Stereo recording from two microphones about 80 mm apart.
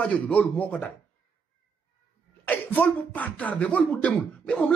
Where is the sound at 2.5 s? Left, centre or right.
Left.